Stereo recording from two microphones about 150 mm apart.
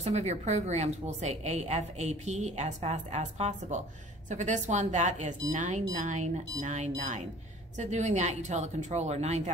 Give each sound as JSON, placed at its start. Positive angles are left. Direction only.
{"t": 0.0, "sound": "a woman's voice", "side_deg": -50}